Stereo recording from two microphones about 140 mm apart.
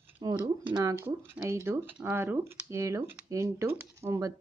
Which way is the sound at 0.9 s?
15° right (ahead or behind).